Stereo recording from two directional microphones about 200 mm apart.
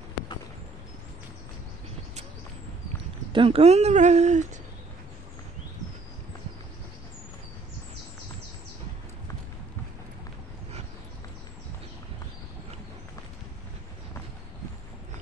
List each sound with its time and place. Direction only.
3.3 s speech: 30° right (ahead or behind)